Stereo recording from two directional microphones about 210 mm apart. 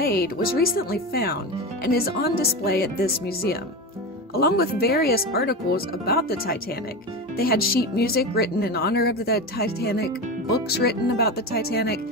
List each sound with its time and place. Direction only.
0.0 s speech: 45° left (ahead or behind)